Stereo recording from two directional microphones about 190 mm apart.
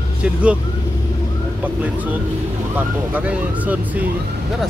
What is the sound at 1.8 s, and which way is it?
Speech, 10° right (ahead or behind).